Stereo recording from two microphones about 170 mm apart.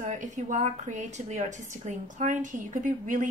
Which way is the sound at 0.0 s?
45° right (ahead or behind).